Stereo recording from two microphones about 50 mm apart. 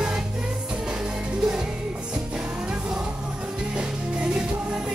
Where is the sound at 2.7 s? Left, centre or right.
Centre.